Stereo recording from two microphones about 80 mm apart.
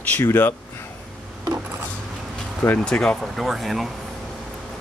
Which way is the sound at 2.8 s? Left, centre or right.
Centre.